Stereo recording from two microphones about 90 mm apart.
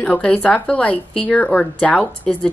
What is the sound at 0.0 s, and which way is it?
Speech, 10° left (ahead or behind).